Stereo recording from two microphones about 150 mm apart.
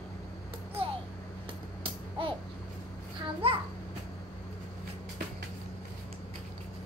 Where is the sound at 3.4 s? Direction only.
40° right (ahead or behind).